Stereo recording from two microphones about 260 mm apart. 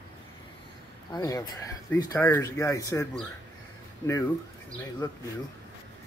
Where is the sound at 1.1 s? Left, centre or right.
Centre.